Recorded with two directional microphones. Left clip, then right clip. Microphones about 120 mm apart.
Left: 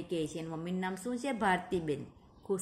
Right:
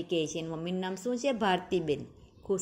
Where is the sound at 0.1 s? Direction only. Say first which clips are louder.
Right 4 dB; 25° right (ahead or behind).